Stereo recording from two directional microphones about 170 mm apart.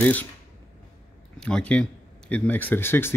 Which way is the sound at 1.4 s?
5° left (ahead or behind).